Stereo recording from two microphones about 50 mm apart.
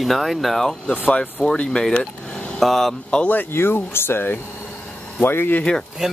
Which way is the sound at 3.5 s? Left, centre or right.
Left.